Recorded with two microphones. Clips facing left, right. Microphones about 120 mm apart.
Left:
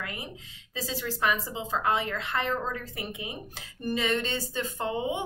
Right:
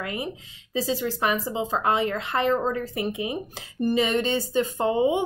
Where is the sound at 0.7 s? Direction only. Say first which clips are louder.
Right 7 dB; 20° right (ahead or behind).